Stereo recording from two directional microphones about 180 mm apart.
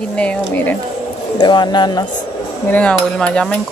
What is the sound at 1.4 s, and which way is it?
Speech, 25° left (ahead or behind).